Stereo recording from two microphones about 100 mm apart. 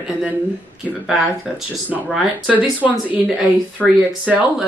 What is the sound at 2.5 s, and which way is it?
Speech, 15° right (ahead or behind).